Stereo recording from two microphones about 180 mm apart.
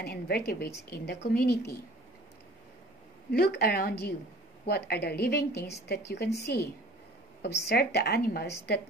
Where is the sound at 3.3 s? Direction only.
60° left (ahead or behind).